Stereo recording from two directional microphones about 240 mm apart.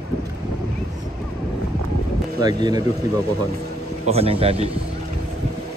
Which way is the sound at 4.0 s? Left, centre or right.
Right.